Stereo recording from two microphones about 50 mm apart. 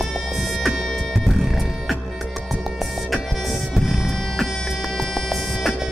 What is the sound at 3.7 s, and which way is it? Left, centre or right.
Music, centre.